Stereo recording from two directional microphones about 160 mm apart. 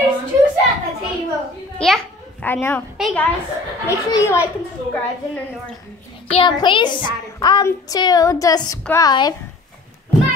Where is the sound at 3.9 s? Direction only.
20° left (ahead or behind).